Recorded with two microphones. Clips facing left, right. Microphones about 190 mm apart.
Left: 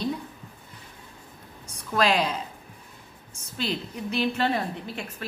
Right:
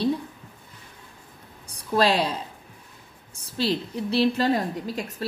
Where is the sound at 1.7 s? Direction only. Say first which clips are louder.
Right 2 dB; 35° right (ahead or behind).